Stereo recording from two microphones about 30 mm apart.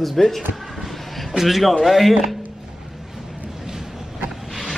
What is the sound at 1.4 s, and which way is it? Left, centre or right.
Speech, centre.